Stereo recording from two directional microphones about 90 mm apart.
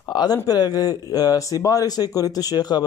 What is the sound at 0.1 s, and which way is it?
Speech, 50° left (ahead or behind).